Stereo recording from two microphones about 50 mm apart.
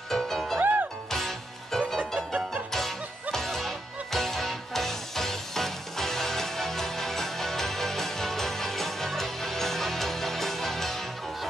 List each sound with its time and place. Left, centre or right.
0.1 s music: centre
0.6 s music: right
1.1 s music: centre
2.0 s music: right
2.7 s music: centre